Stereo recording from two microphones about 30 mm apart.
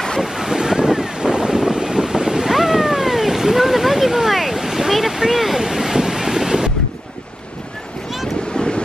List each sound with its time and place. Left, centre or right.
0.2 s waves: centre
1.2 s wind noise: right
2.5 s wild animals: centre
4.9 s a sound: centre
5.6 s waves: centre
8.5 s vehicle: left